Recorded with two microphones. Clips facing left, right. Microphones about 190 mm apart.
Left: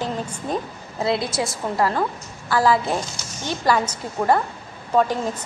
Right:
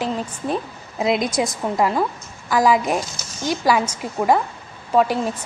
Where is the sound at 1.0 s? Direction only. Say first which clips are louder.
Right 3 dB; 15° right (ahead or behind).